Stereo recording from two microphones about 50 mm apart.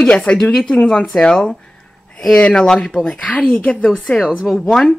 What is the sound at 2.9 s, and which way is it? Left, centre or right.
Speech, left.